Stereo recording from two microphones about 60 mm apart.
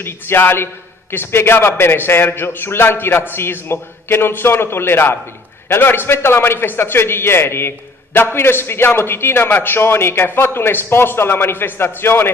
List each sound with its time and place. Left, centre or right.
0.0 s a man's voice: left